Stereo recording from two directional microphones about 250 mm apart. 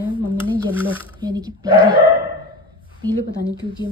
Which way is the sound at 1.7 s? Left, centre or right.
Centre.